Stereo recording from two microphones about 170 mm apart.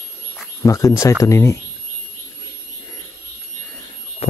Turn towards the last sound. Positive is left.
turn(degrees=35)  # may be behind; listen again after turning